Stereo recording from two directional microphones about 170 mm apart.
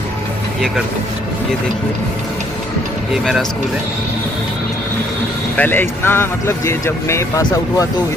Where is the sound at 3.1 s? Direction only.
Centre (ahead or behind).